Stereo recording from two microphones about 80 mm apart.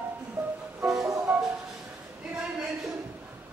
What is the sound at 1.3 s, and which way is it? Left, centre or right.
Music, right.